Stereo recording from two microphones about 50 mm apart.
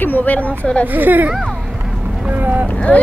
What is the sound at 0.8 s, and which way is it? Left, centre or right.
Speech, right.